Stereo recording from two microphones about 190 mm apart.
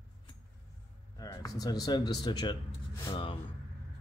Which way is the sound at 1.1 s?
20° left (ahead or behind).